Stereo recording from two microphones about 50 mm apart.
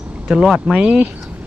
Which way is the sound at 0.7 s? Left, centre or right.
Right.